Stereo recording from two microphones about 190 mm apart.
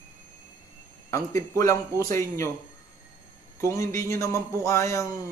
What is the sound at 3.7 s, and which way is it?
Speech, 15° left (ahead or behind).